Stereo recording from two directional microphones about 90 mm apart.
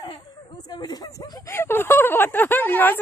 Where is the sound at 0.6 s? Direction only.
50° left (ahead or behind).